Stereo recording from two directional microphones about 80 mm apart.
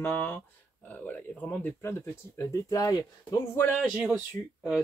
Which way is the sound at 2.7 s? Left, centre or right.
Left.